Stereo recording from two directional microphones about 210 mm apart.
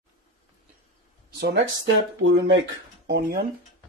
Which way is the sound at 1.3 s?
50° right (ahead or behind).